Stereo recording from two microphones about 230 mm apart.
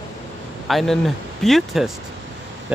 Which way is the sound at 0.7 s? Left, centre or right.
Centre.